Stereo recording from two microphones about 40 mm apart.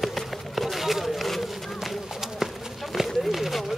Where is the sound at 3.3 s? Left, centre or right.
Centre.